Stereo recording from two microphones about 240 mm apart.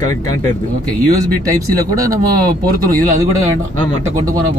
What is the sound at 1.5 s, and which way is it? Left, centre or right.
Speech, centre.